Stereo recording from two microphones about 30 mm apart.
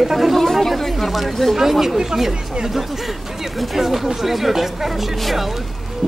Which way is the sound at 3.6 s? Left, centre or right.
Centre.